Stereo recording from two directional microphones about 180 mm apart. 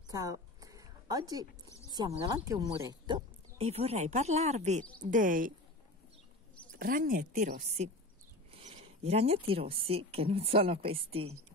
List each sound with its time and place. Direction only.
0.1 s a sound: 20° right (ahead or behind)
1.9 s a woman's voice: 20° right (ahead or behind); by 5.5 s 50° right (ahead or behind)
6.8 s a woman's voice: 50° right (ahead or behind); by 11.3 s 30° right (ahead or behind)